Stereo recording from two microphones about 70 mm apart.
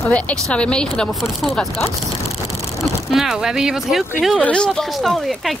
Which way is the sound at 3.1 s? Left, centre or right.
Centre.